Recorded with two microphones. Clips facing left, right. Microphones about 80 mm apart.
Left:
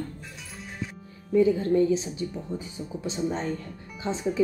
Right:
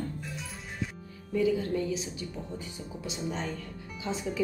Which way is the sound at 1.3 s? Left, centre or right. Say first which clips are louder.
Left 7 dB; left.